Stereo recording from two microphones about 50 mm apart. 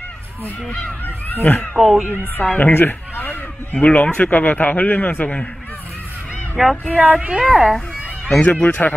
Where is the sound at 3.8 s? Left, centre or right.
Left.